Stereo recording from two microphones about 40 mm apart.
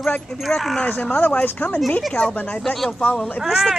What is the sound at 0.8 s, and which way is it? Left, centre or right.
Speech, left.